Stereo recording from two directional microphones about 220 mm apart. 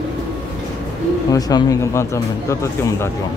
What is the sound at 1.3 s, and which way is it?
Speech, 15° left (ahead or behind).